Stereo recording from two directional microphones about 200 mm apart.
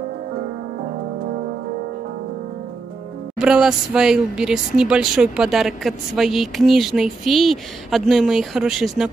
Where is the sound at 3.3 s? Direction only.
5° right (ahead or behind).